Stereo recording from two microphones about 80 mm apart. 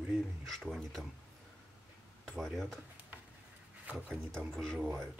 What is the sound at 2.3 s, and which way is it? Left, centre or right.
Speech, centre.